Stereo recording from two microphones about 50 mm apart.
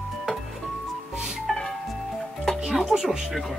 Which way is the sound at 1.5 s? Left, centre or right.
Centre.